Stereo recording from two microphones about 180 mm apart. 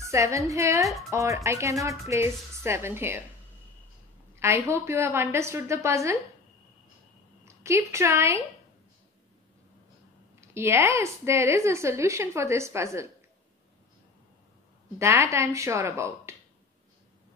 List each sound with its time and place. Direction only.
0.0 s a woman's voice: 15° right (ahead or behind)
4.4 s a woman's voice: 15° right (ahead or behind)
7.4 s a woman's voice: 15° right (ahead or behind)
10.4 s a woman's voice: 15° right (ahead or behind)
15.0 s a woman's voice: 15° right (ahead or behind)